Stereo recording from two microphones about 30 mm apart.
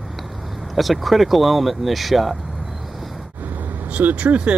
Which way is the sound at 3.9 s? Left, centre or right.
Right.